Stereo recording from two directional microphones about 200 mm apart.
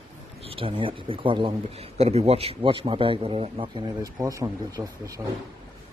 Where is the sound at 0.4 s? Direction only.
25° right (ahead or behind).